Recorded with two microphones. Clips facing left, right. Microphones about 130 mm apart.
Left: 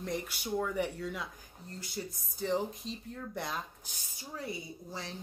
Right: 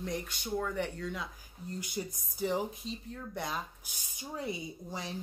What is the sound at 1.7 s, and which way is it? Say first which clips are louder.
Speech: right 3 dB; 15° right (ahead or behind).